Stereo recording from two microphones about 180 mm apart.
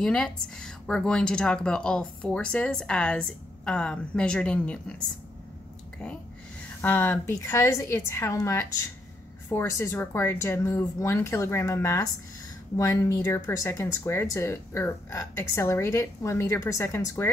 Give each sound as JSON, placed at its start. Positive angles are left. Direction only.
{"t": 0.0, "sound": "speech", "side_deg": 5}
{"t": 6.8, "sound": "speech", "side_deg": 10}